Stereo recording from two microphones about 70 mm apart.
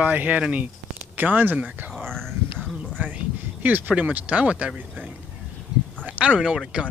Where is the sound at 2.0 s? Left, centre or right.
Centre.